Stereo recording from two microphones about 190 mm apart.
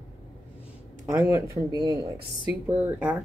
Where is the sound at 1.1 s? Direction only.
10° right (ahead or behind).